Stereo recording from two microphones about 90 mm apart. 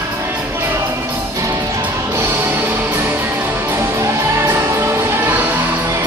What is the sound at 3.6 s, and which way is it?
Music, 30° right (ahead or behind).